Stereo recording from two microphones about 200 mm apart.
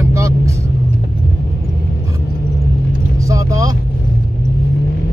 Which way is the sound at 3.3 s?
15° right (ahead or behind).